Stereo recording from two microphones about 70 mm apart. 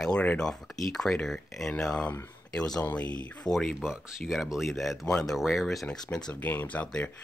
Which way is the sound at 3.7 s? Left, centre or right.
Centre.